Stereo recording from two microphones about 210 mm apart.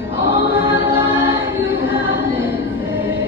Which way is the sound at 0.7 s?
10° right (ahead or behind).